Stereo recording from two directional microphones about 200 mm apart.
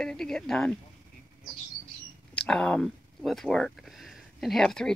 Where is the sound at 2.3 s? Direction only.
5° left (ahead or behind).